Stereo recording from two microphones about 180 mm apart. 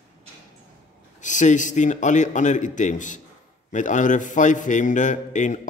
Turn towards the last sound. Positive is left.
turn(degrees=40)  # may be behind; listen again after turning